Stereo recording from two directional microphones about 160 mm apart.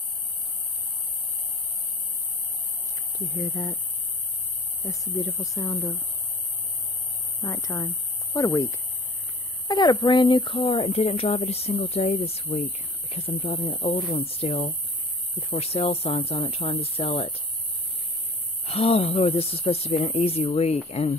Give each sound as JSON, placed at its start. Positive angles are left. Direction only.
{"t": 3.3, "sound": "speech", "side_deg": 25}
{"t": 4.8, "sound": "speech", "side_deg": 20}
{"t": 7.4, "sound": "speech", "side_deg": 20}
{"t": 18.7, "sound": "speech", "side_deg": 40}